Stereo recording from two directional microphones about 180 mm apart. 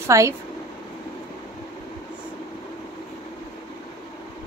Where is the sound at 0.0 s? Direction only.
15° right (ahead or behind).